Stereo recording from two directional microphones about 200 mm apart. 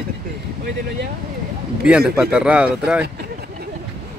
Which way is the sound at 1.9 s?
5° right (ahead or behind).